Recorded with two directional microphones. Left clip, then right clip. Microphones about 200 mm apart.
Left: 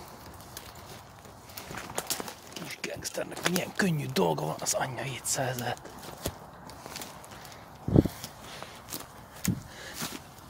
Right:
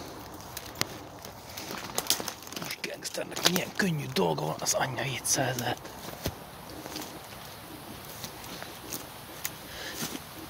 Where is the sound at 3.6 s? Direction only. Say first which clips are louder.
Even; 30° left (ahead or behind).